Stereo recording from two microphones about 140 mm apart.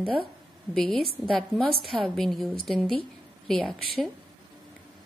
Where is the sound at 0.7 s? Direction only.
5° left (ahead or behind).